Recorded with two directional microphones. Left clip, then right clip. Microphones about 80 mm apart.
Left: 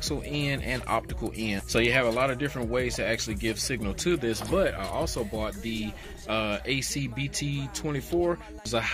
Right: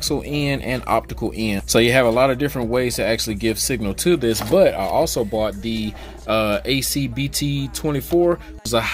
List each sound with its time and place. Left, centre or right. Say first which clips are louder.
0.0 s speech: right 8 dB; right
1.7 s speech: right 9 dB; right
8.3 s speech: right 9 dB; centre